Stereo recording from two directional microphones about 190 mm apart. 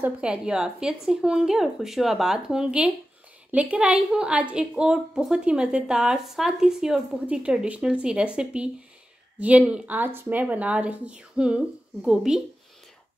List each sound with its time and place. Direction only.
0.0 s a woman's voice: 5° right (ahead or behind)